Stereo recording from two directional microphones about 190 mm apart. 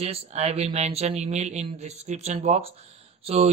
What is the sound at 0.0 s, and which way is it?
Speech, 35° right (ahead or behind).